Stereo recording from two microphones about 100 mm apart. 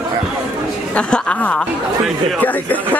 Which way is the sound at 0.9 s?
10° left (ahead or behind).